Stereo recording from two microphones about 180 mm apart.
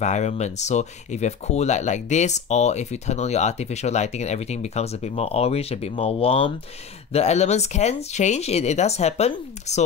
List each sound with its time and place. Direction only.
0.0 s speech: 40° left (ahead or behind)